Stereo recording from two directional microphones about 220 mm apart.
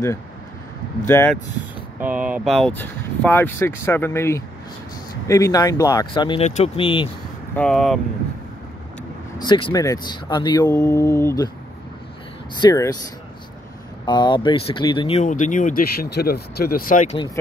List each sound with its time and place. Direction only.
1.0 s speech: 10° left (ahead or behind)
2.0 s speech: 5° right (ahead or behind); by 7.1 s 25° left (ahead or behind)
7.5 s speech: 5° left (ahead or behind)
9.4 s speech: 20° left (ahead or behind)
12.5 s speech: 15° left (ahead or behind)
14.0 s speech: 20° left (ahead or behind); by 17.2 s 35° left (ahead or behind)